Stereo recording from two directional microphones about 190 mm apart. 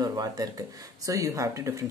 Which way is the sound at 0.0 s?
20° right (ahead or behind).